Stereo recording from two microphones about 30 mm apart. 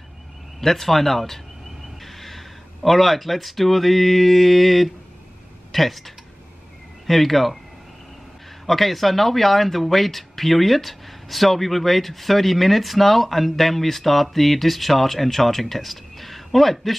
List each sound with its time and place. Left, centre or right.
0.6 s speech: centre
8.6 s speech: centre